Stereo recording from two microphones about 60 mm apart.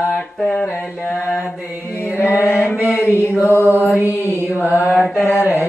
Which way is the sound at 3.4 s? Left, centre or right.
Left.